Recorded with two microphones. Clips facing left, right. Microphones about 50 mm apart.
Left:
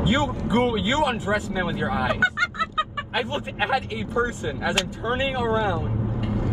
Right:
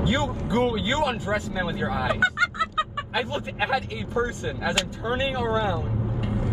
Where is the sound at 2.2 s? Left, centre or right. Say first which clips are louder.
Even; centre.